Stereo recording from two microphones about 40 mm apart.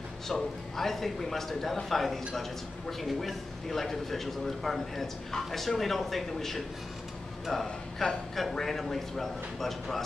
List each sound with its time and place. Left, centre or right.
0.3 s a man's voice: centre
7.6 s a man's voice: centre